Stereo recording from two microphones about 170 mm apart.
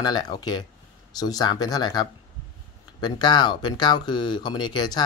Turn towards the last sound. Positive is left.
turn(degrees=25)  # may be behind; listen again after turning